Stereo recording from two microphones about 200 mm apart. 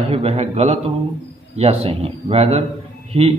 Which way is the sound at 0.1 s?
30° right (ahead or behind).